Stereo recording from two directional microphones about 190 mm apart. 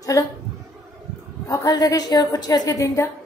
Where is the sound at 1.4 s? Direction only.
20° left (ahead or behind).